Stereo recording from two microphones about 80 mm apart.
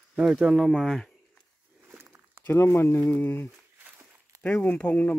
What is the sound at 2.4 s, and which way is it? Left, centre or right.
Speech, left.